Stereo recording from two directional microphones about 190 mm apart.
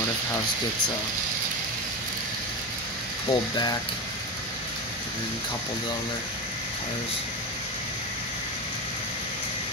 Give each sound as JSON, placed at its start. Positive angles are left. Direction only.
{"t": 3.3, "sound": "speech", "side_deg": 20}